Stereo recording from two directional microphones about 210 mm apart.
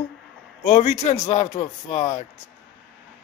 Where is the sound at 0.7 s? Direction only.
35° left (ahead or behind).